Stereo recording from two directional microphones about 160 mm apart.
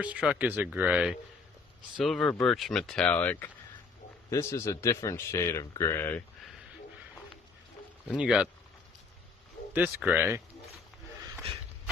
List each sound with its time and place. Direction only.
0.0 s a man's voice: 10° right (ahead or behind); by 6.2 s 15° left (ahead or behind)
8.1 s speech: 5° right (ahead or behind)
9.8 s speech: 15° right (ahead or behind)